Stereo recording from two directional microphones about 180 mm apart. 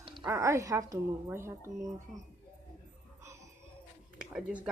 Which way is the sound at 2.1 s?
Centre (ahead or behind).